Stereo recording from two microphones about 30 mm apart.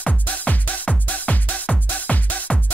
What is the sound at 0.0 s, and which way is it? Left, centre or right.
Music, left.